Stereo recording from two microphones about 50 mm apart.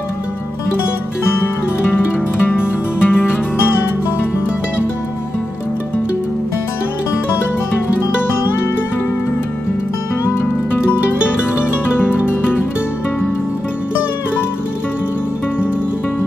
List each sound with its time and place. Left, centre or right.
1.3 s music: left
10.2 s music: left